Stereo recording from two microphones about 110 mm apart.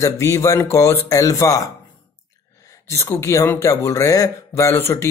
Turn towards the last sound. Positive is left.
turn(degrees=25)  # may be behind; listen again after turning